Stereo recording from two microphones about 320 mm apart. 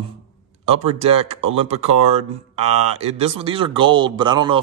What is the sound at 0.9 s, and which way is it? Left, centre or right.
Speech, centre.